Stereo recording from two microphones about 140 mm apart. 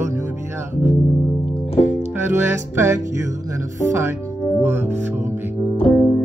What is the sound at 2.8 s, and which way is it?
Music, 20° right (ahead or behind).